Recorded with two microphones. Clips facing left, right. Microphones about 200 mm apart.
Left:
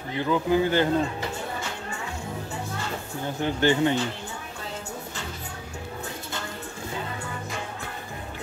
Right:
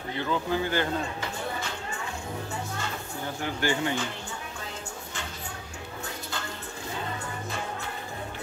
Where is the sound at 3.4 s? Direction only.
20° left (ahead or behind).